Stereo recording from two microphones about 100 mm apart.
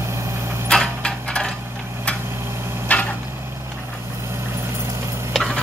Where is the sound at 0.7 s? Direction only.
10° left (ahead or behind).